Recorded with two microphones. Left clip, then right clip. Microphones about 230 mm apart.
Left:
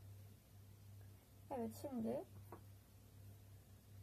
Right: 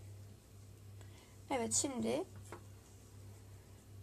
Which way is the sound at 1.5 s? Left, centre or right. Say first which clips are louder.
Right 10 dB; right.